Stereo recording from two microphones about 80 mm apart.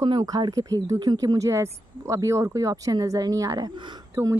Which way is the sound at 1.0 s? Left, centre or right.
Right.